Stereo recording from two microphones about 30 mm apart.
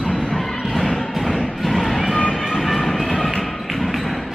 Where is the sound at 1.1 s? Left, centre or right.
Centre.